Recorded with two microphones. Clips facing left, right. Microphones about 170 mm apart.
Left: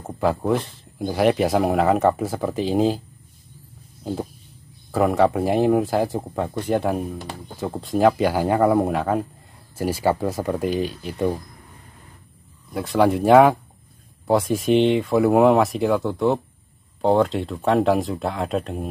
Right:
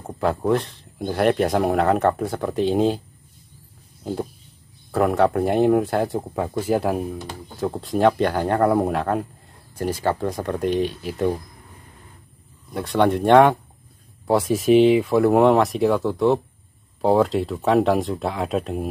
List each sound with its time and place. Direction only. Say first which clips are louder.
0.0 s speech: even; centre (ahead or behind)
4.0 s speech: even; centre (ahead or behind)
12.7 s speech: left 1 dB; centre (ahead or behind)